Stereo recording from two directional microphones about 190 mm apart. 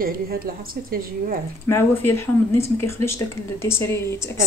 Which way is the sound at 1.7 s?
10° left (ahead or behind).